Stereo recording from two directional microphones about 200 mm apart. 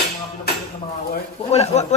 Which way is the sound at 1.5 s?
35° left (ahead or behind).